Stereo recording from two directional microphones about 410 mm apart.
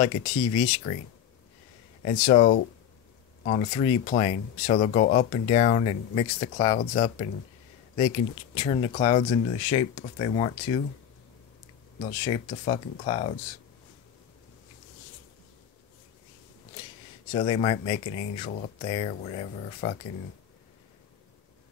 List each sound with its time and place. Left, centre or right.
0.0 s speech: centre
2.0 s speech: centre
8.5 s speech: centre
12.3 s speech: centre
17.3 s speech: centre